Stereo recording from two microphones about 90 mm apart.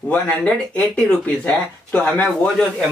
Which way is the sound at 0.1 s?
10° left (ahead or behind).